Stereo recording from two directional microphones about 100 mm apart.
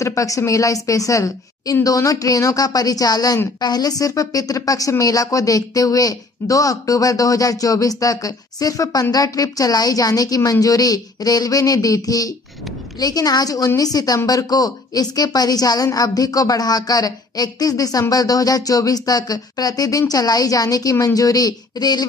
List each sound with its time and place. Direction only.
0.0 s a woman's voice: 30° left (ahead or behind)